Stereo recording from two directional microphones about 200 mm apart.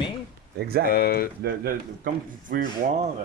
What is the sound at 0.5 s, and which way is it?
Speech, 50° right (ahead or behind).